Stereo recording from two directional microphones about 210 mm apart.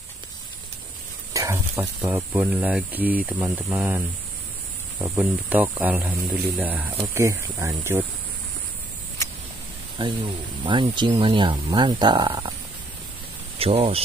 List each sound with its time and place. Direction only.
1.3 s a sound: 15° right (ahead or behind)
2.0 s speech: 10° right (ahead or behind)
10.0 s speech: 20° right (ahead or behind)
13.6 s speech: 30° right (ahead or behind)